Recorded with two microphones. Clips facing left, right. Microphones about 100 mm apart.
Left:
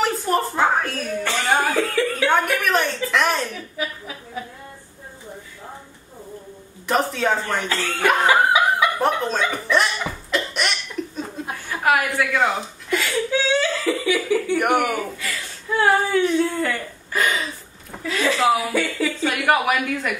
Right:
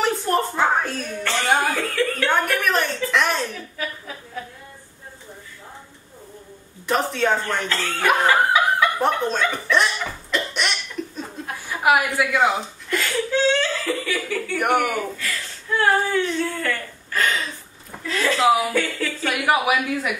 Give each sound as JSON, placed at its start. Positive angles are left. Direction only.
{"t": 0.0, "sound": "a sound", "side_deg": 0}
{"t": 1.2, "sound": "speech", "side_deg": 5}
{"t": 6.9, "sound": "speech", "side_deg": 0}
{"t": 8.3, "sound": "snicker", "side_deg": 15}
{"t": 9.0, "sound": "speech", "side_deg": 0}
{"t": 10.3, "sound": "cough", "side_deg": 0}
{"t": 11.8, "sound": "speech", "side_deg": -10}
{"t": 14.6, "sound": "speech", "side_deg": 0}